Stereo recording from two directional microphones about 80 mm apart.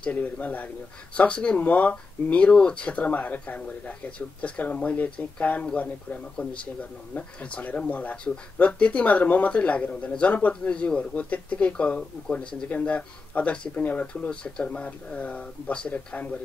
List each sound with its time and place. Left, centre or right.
0.0 s speech: centre